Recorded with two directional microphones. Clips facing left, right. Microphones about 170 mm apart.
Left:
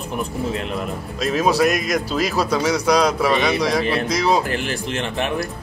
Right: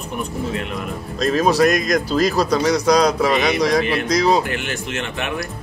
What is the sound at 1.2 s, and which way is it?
Speech, 5° left (ahead or behind).